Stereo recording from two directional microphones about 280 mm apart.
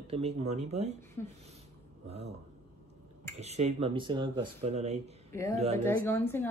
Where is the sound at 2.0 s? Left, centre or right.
Right.